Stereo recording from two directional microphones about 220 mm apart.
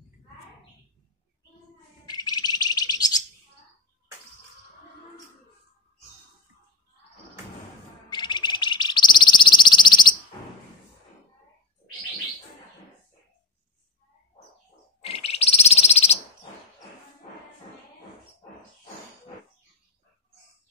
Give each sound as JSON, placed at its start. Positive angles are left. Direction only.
{"t": 2.0, "sound": "bird", "side_deg": 20}
{"t": 8.1, "sound": "bird", "side_deg": 20}
{"t": 15.0, "sound": "bird", "side_deg": 25}